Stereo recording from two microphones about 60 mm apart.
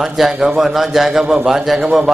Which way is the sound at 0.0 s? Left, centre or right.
Centre.